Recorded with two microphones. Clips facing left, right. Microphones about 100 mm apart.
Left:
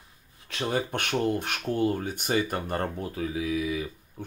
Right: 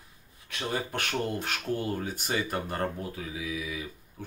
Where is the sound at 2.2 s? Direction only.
35° left (ahead or behind).